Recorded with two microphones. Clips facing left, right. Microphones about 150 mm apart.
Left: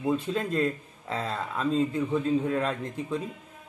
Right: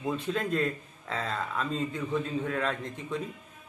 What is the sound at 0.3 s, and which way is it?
Speech, 25° left (ahead or behind).